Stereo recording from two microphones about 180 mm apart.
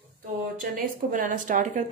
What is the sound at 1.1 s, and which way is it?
Speech, 45° right (ahead or behind).